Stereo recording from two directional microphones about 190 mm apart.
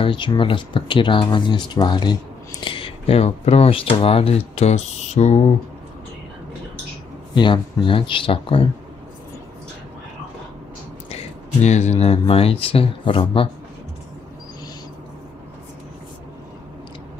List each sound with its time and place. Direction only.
0.0 s speech: 25° left (ahead or behind)
7.3 s speech: 25° left (ahead or behind)
11.6 s speech: 35° left (ahead or behind)